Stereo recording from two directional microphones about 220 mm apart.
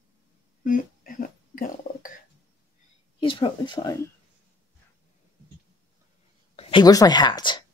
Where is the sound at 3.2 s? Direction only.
25° left (ahead or behind).